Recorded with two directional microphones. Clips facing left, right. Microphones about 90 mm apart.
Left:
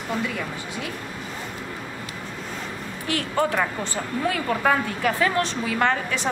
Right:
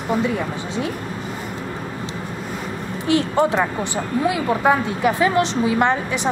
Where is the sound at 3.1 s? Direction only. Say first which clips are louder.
Right 6 dB; 20° right (ahead or behind).